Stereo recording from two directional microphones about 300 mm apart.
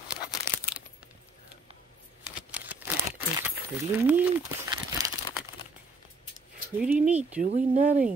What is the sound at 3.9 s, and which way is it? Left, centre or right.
Speech, centre.